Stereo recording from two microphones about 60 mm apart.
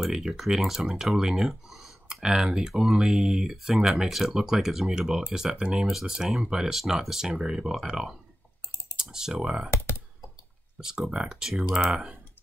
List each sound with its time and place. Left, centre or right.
0.0 s speech: centre
9.7 s computer keyboard: left
11.0 s speech: centre